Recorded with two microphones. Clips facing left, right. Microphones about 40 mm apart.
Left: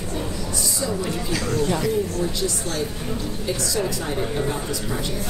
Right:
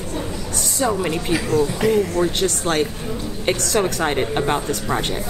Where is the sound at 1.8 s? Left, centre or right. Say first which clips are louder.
Right 5 dB; right.